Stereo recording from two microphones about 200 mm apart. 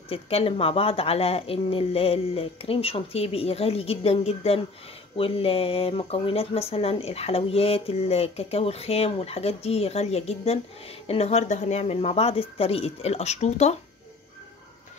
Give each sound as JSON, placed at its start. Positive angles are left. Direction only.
{"t": 0.1, "sound": "a woman's voice", "side_deg": 30}